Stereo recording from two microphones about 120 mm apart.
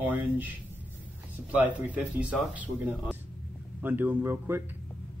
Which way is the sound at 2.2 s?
10° right (ahead or behind).